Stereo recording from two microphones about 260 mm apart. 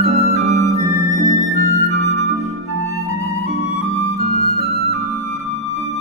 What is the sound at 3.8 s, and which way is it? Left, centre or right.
Music, left.